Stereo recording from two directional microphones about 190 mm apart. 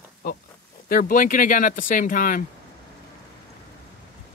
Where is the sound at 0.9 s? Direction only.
50° left (ahead or behind).